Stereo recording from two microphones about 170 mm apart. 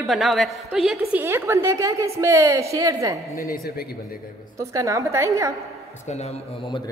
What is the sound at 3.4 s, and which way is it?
Speech, 60° left (ahead or behind).